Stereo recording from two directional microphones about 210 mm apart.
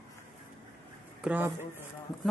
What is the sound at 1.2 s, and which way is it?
Speech, 10° right (ahead or behind).